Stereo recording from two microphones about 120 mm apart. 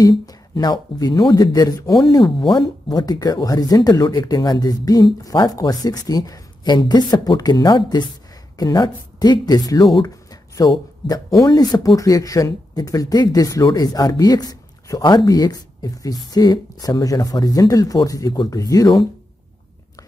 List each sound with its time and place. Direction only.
0.0 s speech: 35° left (ahead or behind)